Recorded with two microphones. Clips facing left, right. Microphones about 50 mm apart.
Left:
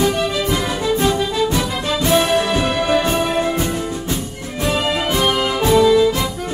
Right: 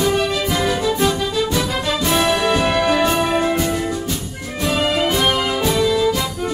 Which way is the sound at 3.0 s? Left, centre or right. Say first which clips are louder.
Right 1 dB; right.